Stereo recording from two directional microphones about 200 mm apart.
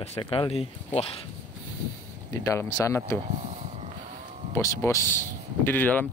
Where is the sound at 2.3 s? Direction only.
15° left (ahead or behind).